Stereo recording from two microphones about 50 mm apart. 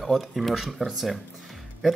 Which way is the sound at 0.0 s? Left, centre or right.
Centre.